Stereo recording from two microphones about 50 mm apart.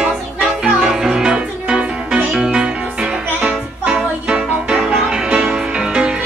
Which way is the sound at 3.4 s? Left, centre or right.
Right.